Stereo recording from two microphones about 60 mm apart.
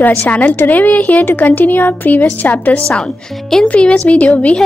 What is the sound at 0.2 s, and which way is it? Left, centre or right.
Speech, left.